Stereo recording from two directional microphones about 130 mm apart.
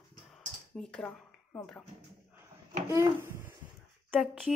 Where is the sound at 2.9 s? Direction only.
20° right (ahead or behind).